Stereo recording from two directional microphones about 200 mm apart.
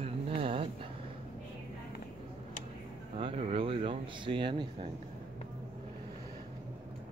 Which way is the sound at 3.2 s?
30° right (ahead or behind).